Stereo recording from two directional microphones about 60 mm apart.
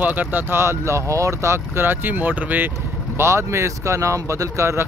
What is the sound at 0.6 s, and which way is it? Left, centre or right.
Speech, right.